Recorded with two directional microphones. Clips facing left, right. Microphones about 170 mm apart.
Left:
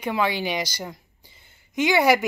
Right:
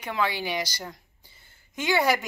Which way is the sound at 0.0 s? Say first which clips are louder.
Left 4 dB; 15° left (ahead or behind).